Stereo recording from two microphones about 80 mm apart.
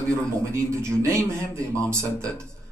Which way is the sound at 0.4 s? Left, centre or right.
Right.